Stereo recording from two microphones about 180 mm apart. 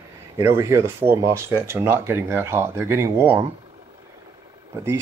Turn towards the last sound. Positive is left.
turn(degrees=-15)  # may be behind; listen again after turning